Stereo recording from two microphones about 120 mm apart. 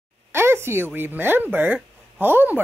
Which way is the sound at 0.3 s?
20° right (ahead or behind).